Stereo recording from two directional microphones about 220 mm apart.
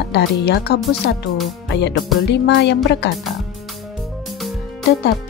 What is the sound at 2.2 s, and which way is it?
Speech, 50° left (ahead or behind).